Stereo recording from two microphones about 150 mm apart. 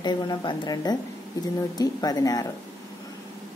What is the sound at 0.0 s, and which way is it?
Speech, 30° left (ahead or behind).